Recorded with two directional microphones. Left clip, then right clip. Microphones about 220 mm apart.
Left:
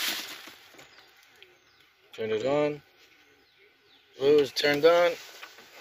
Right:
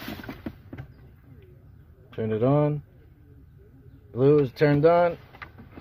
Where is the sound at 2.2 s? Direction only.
10° left (ahead or behind).